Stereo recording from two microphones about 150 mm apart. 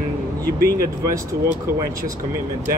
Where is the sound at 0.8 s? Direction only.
25° right (ahead or behind).